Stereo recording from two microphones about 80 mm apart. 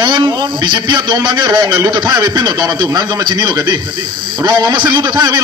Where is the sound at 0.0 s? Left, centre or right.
Right.